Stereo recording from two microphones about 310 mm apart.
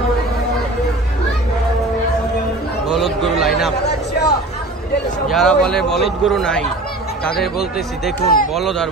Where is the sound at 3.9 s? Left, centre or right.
Left.